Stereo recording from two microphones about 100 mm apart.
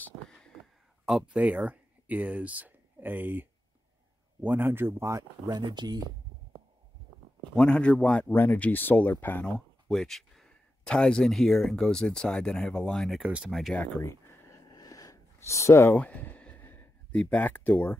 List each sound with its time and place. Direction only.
1.3 s speech: 10° right (ahead or behind)
5.5 s speech: 50° right (ahead or behind)
7.5 s speech: 10° left (ahead or behind)
9.5 s speech: 5° left (ahead or behind)
13.7 s a sound: 25° left (ahead or behind)
14.7 s a sound: 40° left (ahead or behind); by 17.9 s 15° left (ahead or behind)